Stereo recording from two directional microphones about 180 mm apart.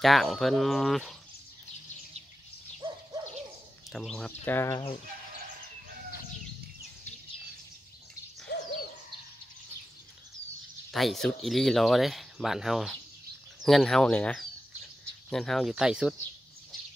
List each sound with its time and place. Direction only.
0.0 s speech: centre (ahead or behind)
3.9 s speech: centre (ahead or behind)
8.5 s hoot: 60° left (ahead or behind)
10.9 s speech: centre (ahead or behind)